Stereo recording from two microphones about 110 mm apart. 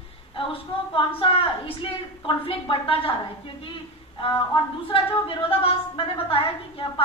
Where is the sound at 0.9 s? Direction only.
50° left (ahead or behind).